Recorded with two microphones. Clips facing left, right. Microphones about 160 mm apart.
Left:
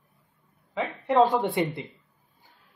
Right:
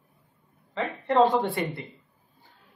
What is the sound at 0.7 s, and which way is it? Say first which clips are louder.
Speech: even; 5° left (ahead or behind).